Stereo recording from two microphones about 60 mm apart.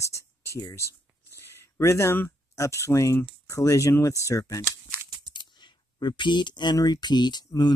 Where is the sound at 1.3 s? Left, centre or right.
Left.